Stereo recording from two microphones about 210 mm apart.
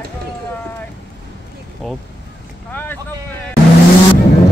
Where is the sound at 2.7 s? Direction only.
10° left (ahead or behind).